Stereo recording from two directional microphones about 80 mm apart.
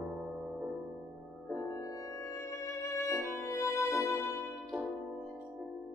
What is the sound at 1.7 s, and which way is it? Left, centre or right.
Music, left.